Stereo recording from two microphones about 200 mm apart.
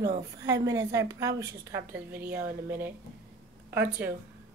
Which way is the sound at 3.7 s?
10° right (ahead or behind).